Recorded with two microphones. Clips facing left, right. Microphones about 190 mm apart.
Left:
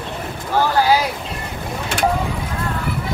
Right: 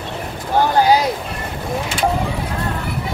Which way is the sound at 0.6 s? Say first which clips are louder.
Right 2 dB; 15° right (ahead or behind).